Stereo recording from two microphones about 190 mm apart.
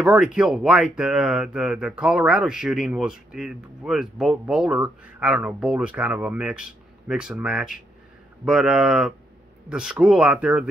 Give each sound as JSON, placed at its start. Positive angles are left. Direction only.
{"t": 0.0, "sound": "speech", "side_deg": -5}